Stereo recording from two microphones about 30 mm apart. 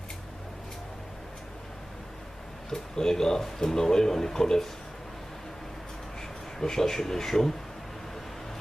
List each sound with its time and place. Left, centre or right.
2.7 s speech: centre
6.6 s speech: centre